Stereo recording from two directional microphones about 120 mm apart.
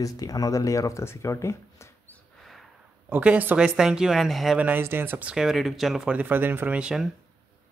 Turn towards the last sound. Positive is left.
turn(degrees=-5)  # may be behind; listen again after turning